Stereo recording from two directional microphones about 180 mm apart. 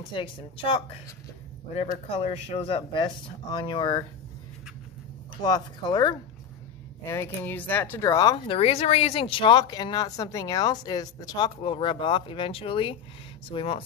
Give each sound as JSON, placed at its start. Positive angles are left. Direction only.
{"t": 0.1, "sound": "speech", "side_deg": 30}
{"t": 1.8, "sound": "speech", "side_deg": 35}
{"t": 5.4, "sound": "speech", "side_deg": 20}